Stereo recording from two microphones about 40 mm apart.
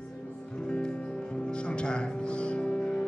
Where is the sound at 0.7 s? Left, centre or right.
Left.